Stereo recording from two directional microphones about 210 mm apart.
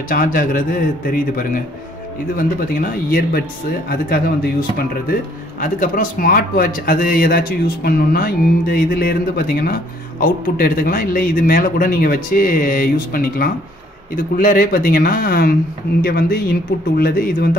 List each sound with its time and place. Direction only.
0.1 s a man's voice: 40° left (ahead or behind)